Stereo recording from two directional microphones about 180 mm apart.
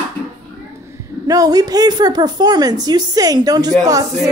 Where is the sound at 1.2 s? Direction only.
20° right (ahead or behind).